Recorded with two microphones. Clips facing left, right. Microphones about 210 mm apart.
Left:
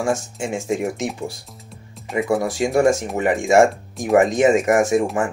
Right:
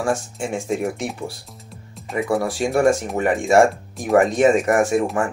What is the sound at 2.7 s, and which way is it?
Speech, 20° left (ahead or behind).